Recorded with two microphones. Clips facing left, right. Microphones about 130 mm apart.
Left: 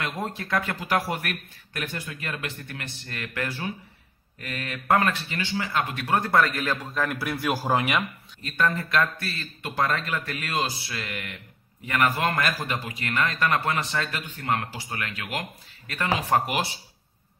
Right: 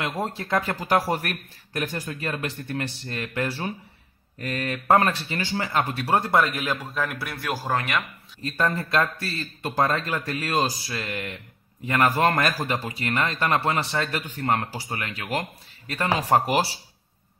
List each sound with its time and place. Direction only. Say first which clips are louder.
0.0 s speech: right 2 dB; 30° right (ahead or behind)
6.5 s a man's voice: even; 10° right (ahead or behind)
7.1 s a man's voice: left 4 dB; centre (ahead or behind)
7.4 s speech: left 2 dB; 15° left (ahead or behind)
8.5 s speech: right 1 dB; 35° right (ahead or behind)